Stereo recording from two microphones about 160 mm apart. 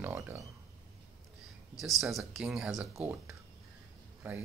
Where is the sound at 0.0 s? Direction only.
15° right (ahead or behind).